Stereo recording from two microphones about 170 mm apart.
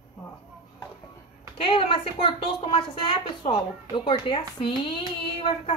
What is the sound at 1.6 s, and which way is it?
A woman's voice, 30° left (ahead or behind).